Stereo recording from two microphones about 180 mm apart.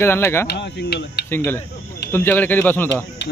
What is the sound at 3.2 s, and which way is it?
Music, 75° left (ahead or behind).